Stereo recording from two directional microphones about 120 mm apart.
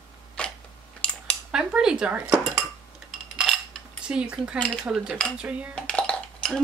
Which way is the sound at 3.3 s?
Centre (ahead or behind).